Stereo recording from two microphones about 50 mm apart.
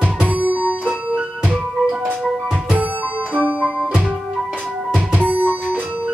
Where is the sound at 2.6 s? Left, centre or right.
Right.